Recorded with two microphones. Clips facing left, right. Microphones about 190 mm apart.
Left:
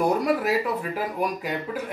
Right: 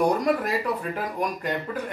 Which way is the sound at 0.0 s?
5° left (ahead or behind).